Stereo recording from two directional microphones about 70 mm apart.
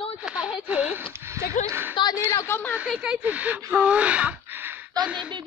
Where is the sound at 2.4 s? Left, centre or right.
Left.